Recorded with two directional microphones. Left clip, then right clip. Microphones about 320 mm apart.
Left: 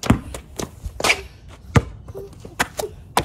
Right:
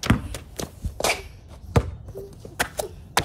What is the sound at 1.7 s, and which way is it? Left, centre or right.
Hands, left.